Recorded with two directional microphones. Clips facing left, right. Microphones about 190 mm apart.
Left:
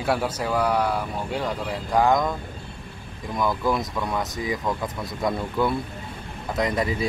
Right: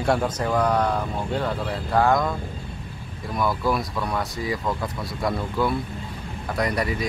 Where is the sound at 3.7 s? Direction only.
20° left (ahead or behind).